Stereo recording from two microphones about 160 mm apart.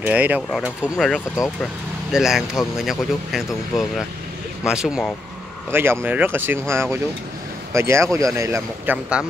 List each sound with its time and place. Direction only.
0.0 s speech: 10° right (ahead or behind)
0.9 s speech: centre (ahead or behind)
5.7 s speech: 15° right (ahead or behind)